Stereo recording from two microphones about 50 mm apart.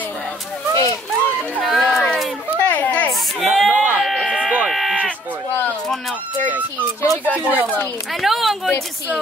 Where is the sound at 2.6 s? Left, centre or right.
Left.